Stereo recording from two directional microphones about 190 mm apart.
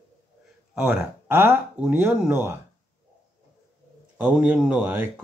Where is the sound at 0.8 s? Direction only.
10° right (ahead or behind).